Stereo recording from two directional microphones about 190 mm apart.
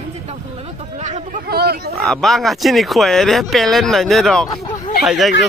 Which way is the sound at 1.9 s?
Centre (ahead or behind).